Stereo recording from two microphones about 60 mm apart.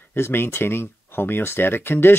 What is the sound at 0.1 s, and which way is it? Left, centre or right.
Speech, left.